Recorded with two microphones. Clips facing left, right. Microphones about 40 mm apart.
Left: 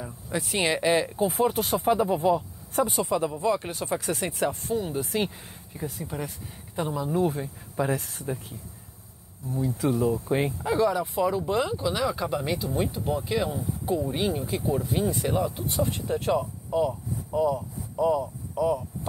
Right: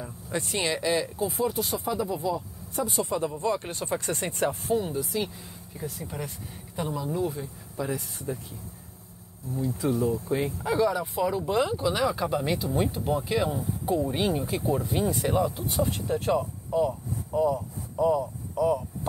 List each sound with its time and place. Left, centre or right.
0.0 s speech: centre
0.7 s speech: left
1.3 s speech: left
2.9 s speech: centre
4.9 s speech: left
5.8 s speech: centre
7.2 s speech: left
9.5 s speech: left
10.6 s speech: centre
16.3 s speech: left
18.0 s speech: centre